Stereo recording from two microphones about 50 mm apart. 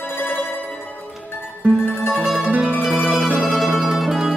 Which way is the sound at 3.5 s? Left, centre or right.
Centre.